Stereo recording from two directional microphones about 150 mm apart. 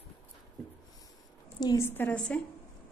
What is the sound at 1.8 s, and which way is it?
Speech, 10° left (ahead or behind).